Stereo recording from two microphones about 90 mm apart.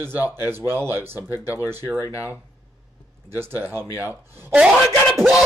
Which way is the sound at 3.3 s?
25° right (ahead or behind).